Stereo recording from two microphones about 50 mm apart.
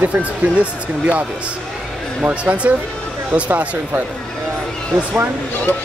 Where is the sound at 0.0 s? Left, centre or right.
Right.